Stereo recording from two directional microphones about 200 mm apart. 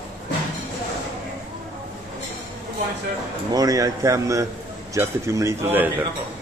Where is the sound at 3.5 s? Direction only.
15° right (ahead or behind).